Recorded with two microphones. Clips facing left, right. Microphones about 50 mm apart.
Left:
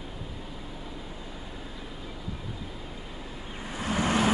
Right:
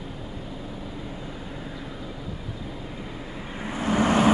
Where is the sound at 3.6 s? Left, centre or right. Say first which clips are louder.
Right 6 dB; right.